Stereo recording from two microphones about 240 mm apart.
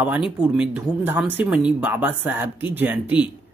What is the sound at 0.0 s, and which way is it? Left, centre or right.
Speech, centre.